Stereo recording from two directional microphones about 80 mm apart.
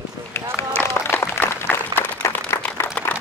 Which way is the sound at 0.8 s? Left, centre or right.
Left.